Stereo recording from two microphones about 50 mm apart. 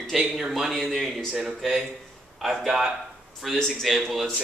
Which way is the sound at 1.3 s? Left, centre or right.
Centre.